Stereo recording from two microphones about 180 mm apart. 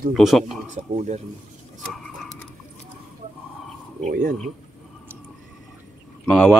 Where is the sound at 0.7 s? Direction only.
40° right (ahead or behind).